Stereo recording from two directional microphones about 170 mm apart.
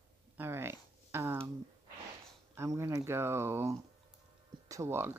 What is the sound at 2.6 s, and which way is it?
Speech, 15° right (ahead or behind).